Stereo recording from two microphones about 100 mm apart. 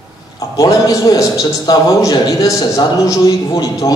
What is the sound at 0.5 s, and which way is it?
A man's voice, 40° left (ahead or behind).